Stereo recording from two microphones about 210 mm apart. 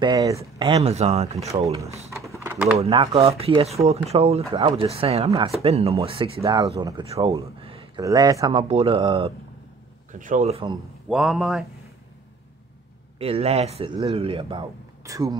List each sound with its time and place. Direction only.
0.0 s speech: 15° right (ahead or behind)
0.8 s speech: 30° right (ahead or behind)
1.7 s speech: 15° right (ahead or behind)
2.4 s typing: 10° right (ahead or behind)
2.8 s speech: 25° right (ahead or behind)
6.4 s speech: 15° right (ahead or behind)
7.6 s a sound: 25° right (ahead or behind)
8.0 s speech: 15° right (ahead or behind)
10.1 s speech: 35° right (ahead or behind)
11.1 s a man's voice: centre (ahead or behind)
13.2 s speech: 30° right (ahead or behind)